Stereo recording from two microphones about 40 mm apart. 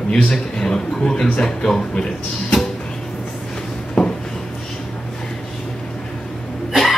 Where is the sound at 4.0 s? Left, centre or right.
Centre.